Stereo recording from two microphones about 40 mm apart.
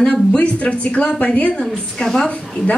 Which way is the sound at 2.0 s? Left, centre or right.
Centre.